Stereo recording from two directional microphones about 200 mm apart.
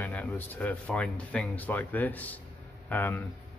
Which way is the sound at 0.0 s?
10° left (ahead or behind).